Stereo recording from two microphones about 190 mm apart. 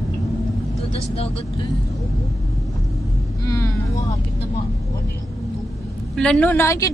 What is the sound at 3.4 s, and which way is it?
Vehicle, 20° left (ahead or behind).